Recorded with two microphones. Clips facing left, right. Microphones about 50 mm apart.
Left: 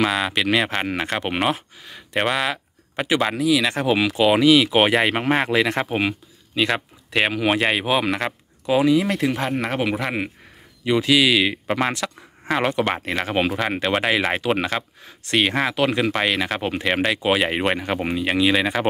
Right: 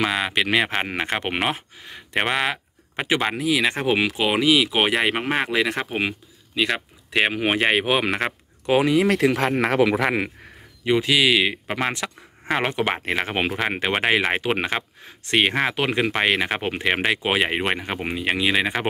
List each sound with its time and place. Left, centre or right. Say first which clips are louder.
0.0 s speech: left 1 dB; centre
1.5 s speech: left 3 dB; right
3.9 s speech: left 7 dB; centre
4.6 s speech: left 3 dB; centre
7.4 s speech: left 2 dB; centre
7.7 s speech: even; right
8.6 s speech: even; right
10.9 s speech: left 1 dB; centre
11.9 s speech: left 2 dB; centre